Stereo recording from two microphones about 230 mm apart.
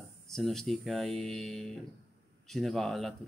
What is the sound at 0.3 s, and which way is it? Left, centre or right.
Speech, centre.